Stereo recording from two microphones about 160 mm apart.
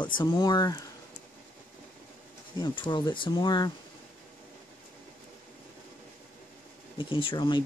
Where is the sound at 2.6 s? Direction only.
30° left (ahead or behind).